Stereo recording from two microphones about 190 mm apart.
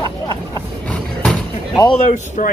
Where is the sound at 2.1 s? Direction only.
40° left (ahead or behind).